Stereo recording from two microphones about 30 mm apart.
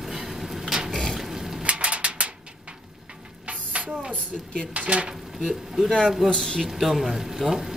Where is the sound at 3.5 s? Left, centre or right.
Right.